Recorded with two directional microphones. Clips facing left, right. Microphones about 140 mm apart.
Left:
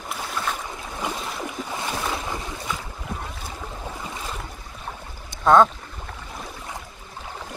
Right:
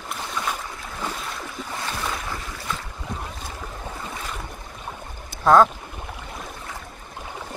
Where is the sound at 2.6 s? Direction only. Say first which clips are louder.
Even; 5° left (ahead or behind).